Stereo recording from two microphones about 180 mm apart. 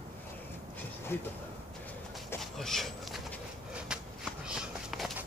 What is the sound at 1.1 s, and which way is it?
Speech, 10° left (ahead or behind).